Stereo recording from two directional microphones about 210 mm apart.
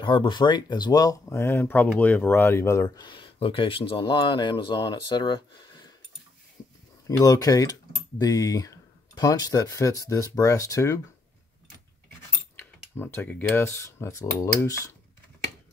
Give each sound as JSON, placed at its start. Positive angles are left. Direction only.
{"t": 0.0, "sound": "speech", "side_deg": 20}
{"t": 7.1, "sound": "speech", "side_deg": 15}
{"t": 12.5, "sound": "speech", "side_deg": 10}